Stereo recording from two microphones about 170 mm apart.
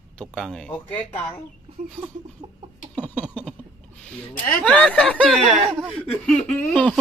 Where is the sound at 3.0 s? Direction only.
10° left (ahead or behind).